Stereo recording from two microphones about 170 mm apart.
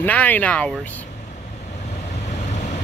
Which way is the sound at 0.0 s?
10° left (ahead or behind).